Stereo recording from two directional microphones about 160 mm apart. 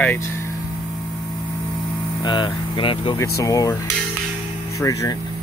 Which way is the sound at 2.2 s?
30° left (ahead or behind).